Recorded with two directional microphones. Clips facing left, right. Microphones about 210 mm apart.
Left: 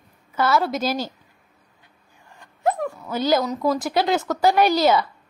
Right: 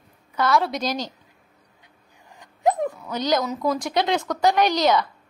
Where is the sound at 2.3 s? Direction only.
15° right (ahead or behind).